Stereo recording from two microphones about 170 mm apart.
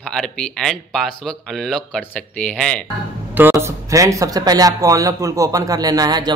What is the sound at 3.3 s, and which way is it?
Speech, 15° right (ahead or behind).